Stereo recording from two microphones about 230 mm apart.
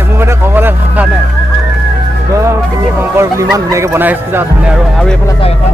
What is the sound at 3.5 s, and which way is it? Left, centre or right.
Speech, centre.